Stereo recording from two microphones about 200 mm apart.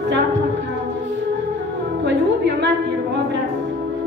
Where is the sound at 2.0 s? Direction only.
60° right (ahead or behind).